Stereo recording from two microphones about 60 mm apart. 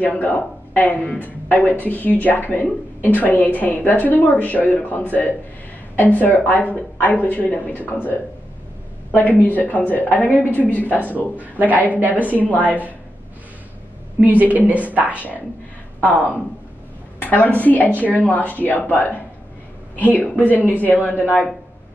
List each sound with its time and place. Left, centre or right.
0.0 s speech: left
11.3 s a woman's voice: right
14.2 s a woman's voice: right
16.0 s speech: left
17.2 s a sound: left
17.6 s speech: left